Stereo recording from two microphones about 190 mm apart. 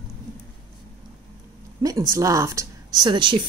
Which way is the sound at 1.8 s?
20° right (ahead or behind).